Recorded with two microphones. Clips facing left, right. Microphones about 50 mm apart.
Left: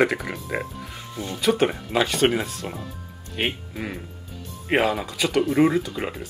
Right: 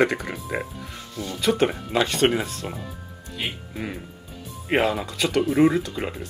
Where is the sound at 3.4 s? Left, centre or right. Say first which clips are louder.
Left 5 dB; left.